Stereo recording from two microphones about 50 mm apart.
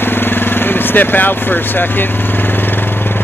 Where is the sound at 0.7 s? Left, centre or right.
Left.